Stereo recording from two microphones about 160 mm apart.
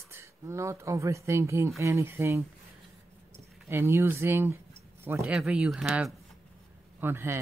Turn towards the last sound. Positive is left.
turn(degrees=-15)  # may be behind; listen again after turning